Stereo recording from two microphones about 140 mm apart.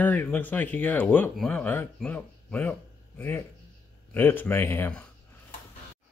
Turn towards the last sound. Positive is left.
turn(degrees=15)  # may be behind; listen again after turning